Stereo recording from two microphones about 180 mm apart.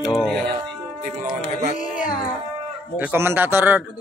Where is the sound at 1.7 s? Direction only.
45° left (ahead or behind).